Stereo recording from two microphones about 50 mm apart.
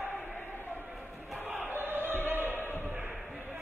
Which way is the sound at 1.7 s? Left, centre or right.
Right.